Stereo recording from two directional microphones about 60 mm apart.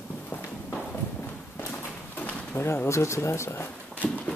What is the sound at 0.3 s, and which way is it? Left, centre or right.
Walk, left.